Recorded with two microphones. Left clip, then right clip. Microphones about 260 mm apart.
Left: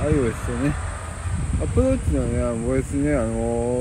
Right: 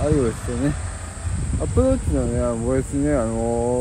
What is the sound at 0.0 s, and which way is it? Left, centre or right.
Speech, centre.